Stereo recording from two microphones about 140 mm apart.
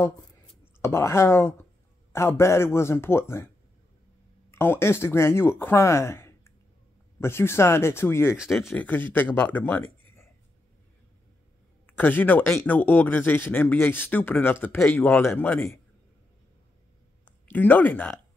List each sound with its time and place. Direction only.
0.7 s a man's voice: 20° left (ahead or behind)
8.4 s speech: centre (ahead or behind)
8.7 s speech: 15° left (ahead or behind)
11.8 s speech: 15° left (ahead or behind)
17.2 s a sound: 10° left (ahead or behind)